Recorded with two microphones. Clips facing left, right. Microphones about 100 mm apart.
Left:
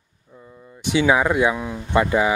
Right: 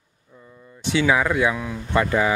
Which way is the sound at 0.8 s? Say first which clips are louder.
Left 2 dB; 15° left (ahead or behind).